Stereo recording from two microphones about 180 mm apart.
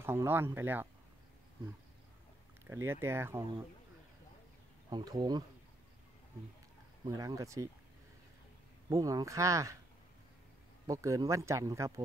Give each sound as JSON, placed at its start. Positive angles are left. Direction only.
{"t": 0.0, "sound": "speech", "side_deg": -15}
{"t": 2.6, "sound": "speech", "side_deg": -15}
{"t": 4.8, "sound": "speech", "side_deg": -20}
{"t": 7.1, "sound": "speech", "side_deg": -20}
{"t": 8.8, "sound": "speech", "side_deg": -20}
{"t": 10.9, "sound": "speech", "side_deg": -20}